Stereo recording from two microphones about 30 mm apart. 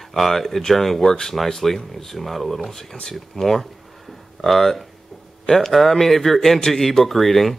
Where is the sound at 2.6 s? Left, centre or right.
Centre.